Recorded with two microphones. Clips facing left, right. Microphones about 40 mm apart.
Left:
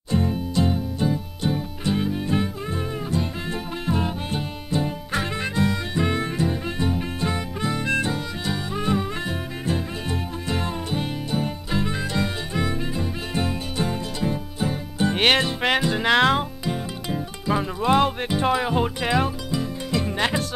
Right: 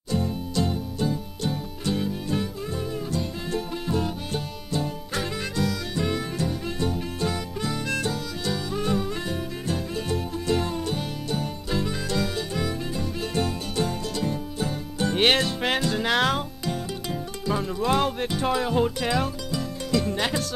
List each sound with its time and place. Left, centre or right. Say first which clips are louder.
0.1 s music: left 3 dB; left